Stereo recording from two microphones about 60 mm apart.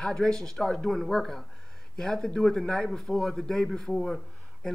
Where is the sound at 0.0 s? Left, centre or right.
Centre.